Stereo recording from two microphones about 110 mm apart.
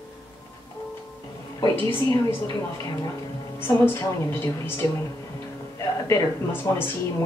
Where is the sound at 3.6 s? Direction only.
20° left (ahead or behind).